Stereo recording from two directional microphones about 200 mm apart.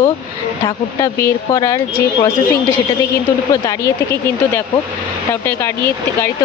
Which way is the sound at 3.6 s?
15° left (ahead or behind).